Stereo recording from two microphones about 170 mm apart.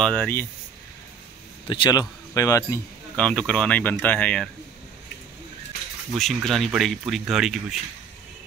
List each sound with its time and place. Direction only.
0.0 s speech: 5° left (ahead or behind)
1.7 s speech: 25° left (ahead or behind)
3.2 s speech: 5° left (ahead or behind)
6.1 s speech: centre (ahead or behind)